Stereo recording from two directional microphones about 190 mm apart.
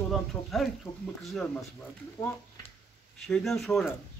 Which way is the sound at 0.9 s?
10° left (ahead or behind).